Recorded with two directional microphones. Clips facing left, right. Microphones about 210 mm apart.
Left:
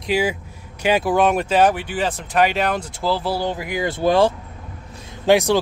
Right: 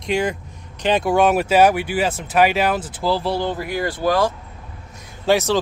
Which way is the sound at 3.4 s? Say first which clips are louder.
Even; 15° left (ahead or behind).